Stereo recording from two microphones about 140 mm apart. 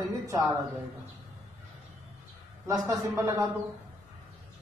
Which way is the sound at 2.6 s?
20° right (ahead or behind).